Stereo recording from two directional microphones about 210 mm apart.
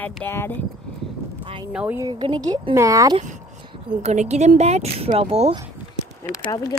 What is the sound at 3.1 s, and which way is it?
Speech, 35° right (ahead or behind).